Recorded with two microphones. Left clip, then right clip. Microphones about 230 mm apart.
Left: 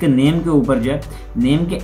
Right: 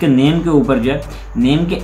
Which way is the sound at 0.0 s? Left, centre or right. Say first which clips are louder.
Right 2 dB; centre.